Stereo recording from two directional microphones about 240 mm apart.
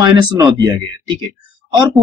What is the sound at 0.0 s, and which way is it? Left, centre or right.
Speech, centre.